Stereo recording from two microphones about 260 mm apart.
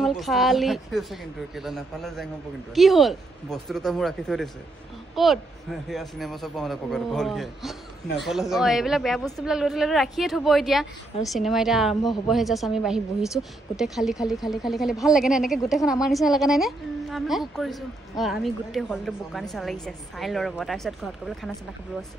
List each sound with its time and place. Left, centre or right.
0.0 s a woman's voice: centre